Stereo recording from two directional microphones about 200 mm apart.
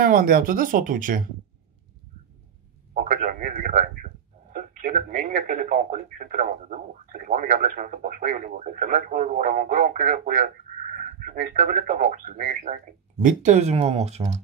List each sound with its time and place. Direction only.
0.0 s speech: 45° right (ahead or behind)
2.9 s a sound: 40° right (ahead or behind)
4.5 s speech: 45° right (ahead or behind)